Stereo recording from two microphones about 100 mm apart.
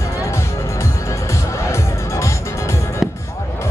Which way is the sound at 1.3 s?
30° left (ahead or behind).